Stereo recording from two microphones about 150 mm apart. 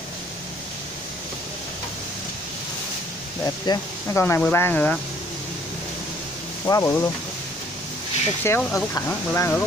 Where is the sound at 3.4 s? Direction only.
20° left (ahead or behind).